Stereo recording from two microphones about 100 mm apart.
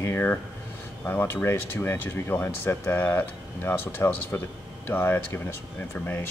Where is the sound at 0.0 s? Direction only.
25° left (ahead or behind).